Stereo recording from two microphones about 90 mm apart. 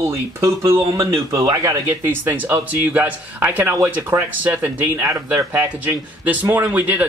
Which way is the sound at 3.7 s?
35° right (ahead or behind).